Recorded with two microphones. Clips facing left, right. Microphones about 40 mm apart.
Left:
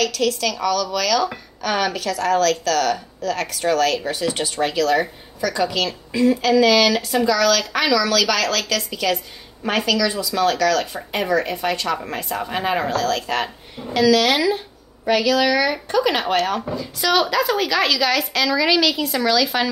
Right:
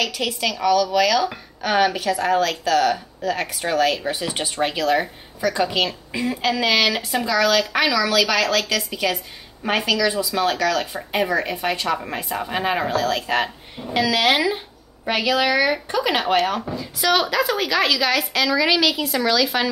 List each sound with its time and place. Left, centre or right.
0.0 s a woman's voice: centre